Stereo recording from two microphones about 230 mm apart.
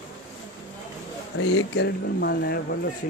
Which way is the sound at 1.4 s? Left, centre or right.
Left.